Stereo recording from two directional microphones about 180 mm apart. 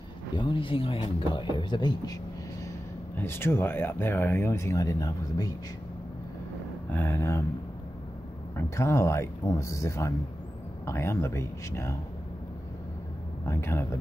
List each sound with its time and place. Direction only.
0.4 s speech: 30° left (ahead or behind)
3.2 s speech: 15° left (ahead or behind)
6.9 s speech: 10° left (ahead or behind)
8.5 s speech: 15° left (ahead or behind)
13.5 s speech: 15° left (ahead or behind)